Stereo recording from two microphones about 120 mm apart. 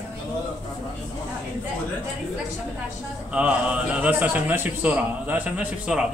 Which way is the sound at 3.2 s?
10° right (ahead or behind).